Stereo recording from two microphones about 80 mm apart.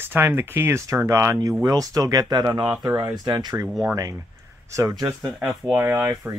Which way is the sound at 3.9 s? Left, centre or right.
Right.